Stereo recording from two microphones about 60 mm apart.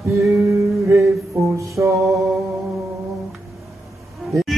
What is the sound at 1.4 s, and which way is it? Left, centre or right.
Music, right.